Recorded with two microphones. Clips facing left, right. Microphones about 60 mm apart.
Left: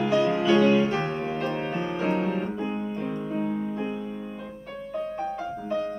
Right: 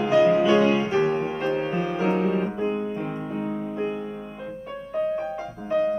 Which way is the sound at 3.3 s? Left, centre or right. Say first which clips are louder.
Even; centre.